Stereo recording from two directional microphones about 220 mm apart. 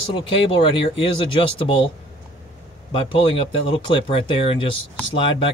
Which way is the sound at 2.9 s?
25° left (ahead or behind).